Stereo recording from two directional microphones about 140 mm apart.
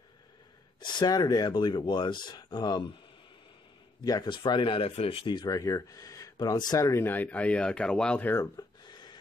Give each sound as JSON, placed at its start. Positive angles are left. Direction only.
{"t": 0.7, "sound": "speech", "side_deg": 35}
{"t": 4.0, "sound": "speech", "side_deg": 30}
{"t": 8.5, "sound": "a sound", "side_deg": 30}